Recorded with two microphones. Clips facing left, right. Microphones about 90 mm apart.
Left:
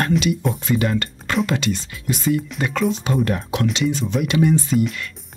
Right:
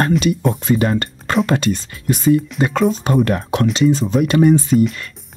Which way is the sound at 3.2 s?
65° right (ahead or behind).